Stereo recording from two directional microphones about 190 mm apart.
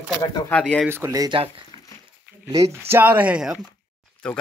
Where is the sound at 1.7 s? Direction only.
20° left (ahead or behind).